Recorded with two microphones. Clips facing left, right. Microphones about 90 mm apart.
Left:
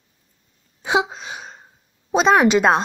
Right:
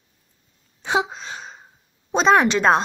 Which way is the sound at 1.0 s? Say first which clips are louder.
Left 1 dB; 5° left (ahead or behind).